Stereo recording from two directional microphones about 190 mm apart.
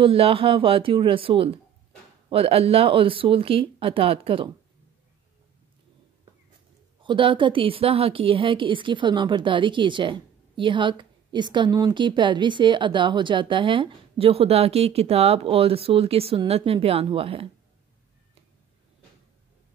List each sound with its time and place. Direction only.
0.0 s a woman's voice: 30° right (ahead or behind)
7.0 s a woman's voice: 25° right (ahead or behind)